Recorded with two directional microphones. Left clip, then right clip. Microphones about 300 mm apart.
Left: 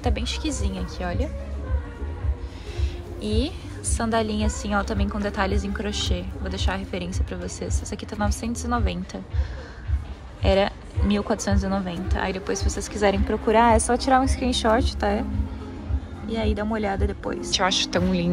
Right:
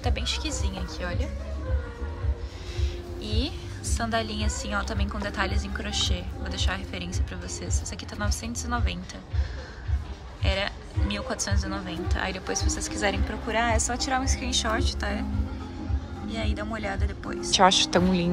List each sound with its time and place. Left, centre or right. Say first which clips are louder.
0.0 s a woman's voice: left 2 dB; centre
3.2 s a woman's voice: left 5 dB; centre
10.4 s a woman's voice: left 8 dB; centre
16.3 s a woman's voice: left 6 dB; centre
17.5 s a woman's voice: right 3 dB; centre